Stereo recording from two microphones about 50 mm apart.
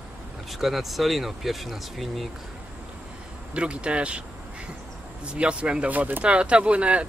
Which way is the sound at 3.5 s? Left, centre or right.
Right.